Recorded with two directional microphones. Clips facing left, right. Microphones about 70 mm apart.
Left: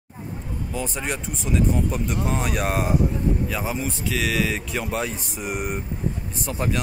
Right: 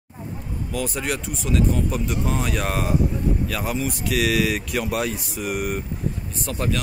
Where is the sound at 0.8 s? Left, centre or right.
Centre.